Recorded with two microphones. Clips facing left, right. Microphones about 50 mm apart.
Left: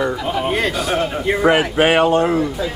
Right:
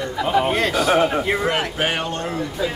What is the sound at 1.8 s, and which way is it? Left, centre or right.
Speech, left.